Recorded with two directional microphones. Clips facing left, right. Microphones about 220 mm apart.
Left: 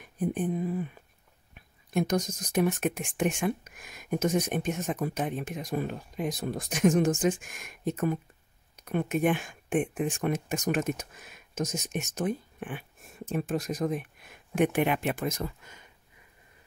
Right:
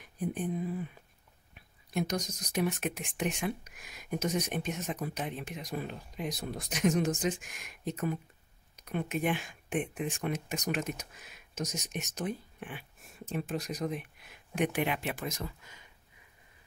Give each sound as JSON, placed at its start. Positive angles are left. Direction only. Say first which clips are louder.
{"t": 0.2, "sound": "speech", "louder": "left 4 dB", "side_deg": 50}